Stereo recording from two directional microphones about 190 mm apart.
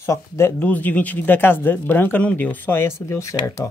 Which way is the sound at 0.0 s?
15° left (ahead or behind).